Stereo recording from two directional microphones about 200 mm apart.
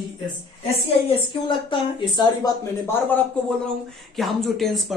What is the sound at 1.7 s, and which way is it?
Speech, 20° left (ahead or behind).